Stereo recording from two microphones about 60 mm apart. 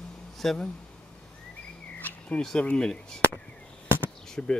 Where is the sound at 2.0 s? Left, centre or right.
Left.